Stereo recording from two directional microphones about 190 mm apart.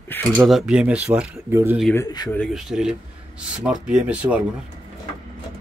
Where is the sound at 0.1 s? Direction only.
Centre (ahead or behind).